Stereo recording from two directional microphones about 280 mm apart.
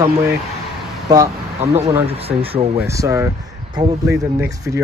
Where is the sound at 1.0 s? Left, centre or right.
Centre.